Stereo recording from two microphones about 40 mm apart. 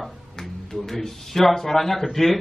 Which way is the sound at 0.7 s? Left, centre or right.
Centre.